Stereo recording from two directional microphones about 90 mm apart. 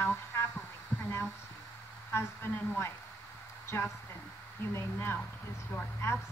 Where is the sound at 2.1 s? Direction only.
25° left (ahead or behind).